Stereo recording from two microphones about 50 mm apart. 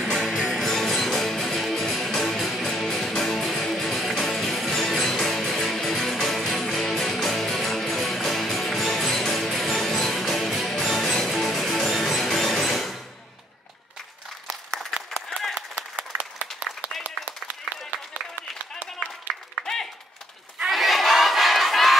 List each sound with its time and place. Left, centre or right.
0.1 s music: centre
14.5 s applause: centre
15.2 s run: centre
16.0 s applause: right
19.6 s a sound: centre
20.7 s crowd: centre